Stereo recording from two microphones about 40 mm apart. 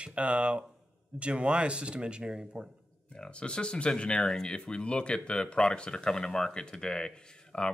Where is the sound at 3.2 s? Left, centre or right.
Left.